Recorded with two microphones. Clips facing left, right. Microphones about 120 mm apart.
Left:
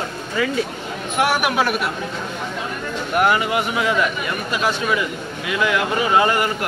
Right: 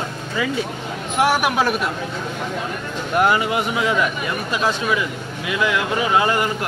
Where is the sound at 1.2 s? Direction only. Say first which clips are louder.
Right 1 dB; 20° right (ahead or behind).